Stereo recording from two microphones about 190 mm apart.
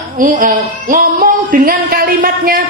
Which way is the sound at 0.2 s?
45° right (ahead or behind).